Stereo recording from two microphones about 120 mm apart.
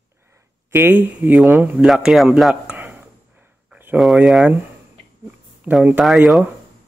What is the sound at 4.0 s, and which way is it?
Speech, centre (ahead or behind).